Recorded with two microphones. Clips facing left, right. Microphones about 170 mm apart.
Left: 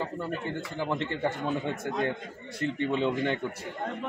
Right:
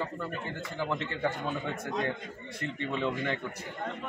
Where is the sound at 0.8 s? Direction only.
25° left (ahead or behind).